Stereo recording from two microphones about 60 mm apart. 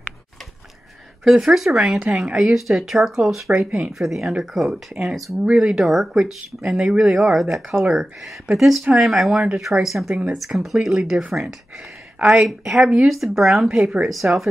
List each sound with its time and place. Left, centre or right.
1.2 s speech: centre
1.8 s speech: centre
2.4 s speech: centre
5.4 s speech: centre
12.4 s speech: centre